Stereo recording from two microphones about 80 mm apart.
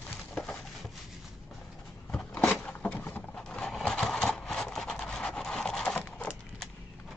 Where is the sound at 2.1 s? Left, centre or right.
Centre.